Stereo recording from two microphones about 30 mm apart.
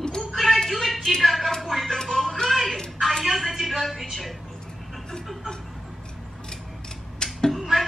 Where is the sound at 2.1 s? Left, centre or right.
Centre.